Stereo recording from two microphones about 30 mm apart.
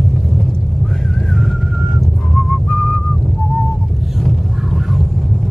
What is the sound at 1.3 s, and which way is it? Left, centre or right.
Whistling, centre.